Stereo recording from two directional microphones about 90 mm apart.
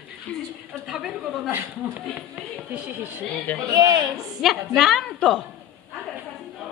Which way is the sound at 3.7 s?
45° right (ahead or behind).